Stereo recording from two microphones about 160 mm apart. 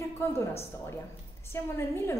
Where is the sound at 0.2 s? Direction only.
15° left (ahead or behind).